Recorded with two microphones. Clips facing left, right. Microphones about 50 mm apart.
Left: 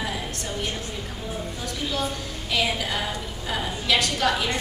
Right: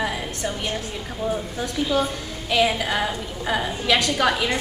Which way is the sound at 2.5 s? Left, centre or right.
Right.